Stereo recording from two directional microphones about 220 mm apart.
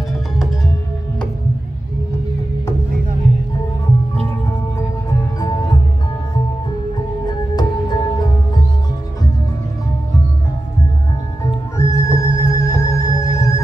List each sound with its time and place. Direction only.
5.4 s music: 20° left (ahead or behind)
7.2 s music: 20° left (ahead or behind)
11.8 s music: 15° left (ahead or behind)